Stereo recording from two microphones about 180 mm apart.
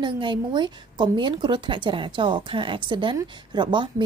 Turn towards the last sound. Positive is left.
turn(degrees=-25)  # may be behind; listen again after turning